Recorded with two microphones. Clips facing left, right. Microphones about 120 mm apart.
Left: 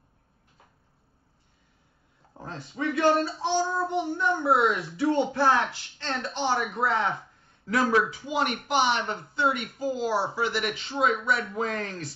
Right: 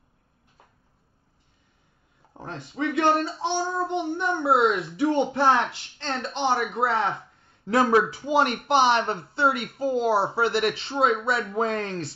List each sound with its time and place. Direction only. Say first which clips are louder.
2.3 s a child's voice: right 2 dB; 20° right (ahead or behind)